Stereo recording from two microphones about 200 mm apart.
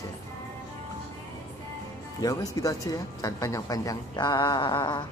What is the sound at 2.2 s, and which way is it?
Speech, 15° left (ahead or behind).